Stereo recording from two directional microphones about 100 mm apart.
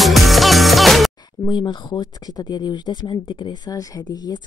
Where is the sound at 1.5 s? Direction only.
50° left (ahead or behind).